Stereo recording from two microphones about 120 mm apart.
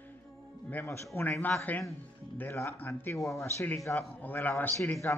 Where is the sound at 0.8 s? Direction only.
25° left (ahead or behind).